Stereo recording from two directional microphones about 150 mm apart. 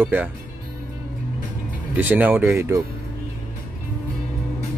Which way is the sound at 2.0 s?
10° right (ahead or behind).